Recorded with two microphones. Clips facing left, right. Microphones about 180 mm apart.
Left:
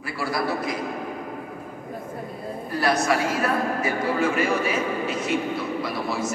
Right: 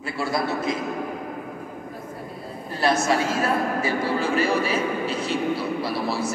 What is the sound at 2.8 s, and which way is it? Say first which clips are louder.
A man's voice: right 1 dB; 25° right (ahead or behind).